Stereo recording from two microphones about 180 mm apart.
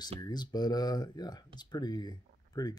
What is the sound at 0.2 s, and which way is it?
Speech, 25° left (ahead or behind).